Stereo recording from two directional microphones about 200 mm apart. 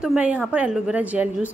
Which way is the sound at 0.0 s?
5° right (ahead or behind).